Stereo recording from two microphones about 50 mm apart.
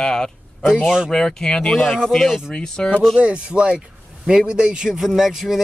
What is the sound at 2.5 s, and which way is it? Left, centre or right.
Speech, centre.